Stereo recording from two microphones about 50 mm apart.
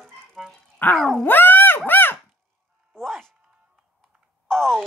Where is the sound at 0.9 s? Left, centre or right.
Centre.